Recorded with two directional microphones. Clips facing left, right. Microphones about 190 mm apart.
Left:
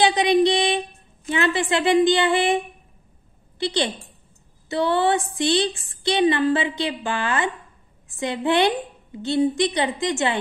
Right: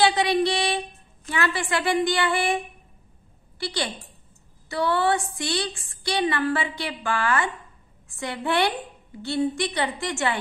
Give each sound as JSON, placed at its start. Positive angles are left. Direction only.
{"t": 0.0, "sound": "a woman's voice", "side_deg": 20}